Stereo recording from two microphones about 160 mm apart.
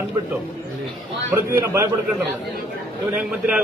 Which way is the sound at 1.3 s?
15° right (ahead or behind).